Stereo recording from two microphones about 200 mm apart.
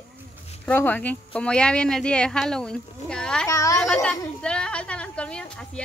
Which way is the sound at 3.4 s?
15° left (ahead or behind).